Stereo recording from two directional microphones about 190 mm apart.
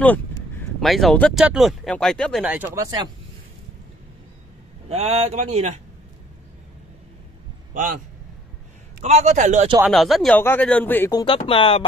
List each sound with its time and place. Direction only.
0.6 s speech: centre (ahead or behind)
2.4 s speech: 10° right (ahead or behind)
4.8 s speech: 35° right (ahead or behind)
7.7 s a man's voice: 45° right (ahead or behind)
9.0 s speech: 35° right (ahead or behind)
9.8 s speech: centre (ahead or behind)
11.1 s speech: 25° left (ahead or behind)